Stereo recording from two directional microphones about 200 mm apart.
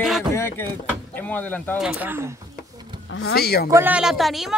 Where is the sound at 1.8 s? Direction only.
5° right (ahead or behind).